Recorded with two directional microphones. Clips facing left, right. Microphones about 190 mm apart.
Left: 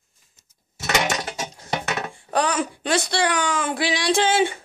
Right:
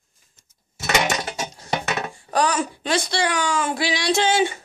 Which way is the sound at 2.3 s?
55° left (ahead or behind).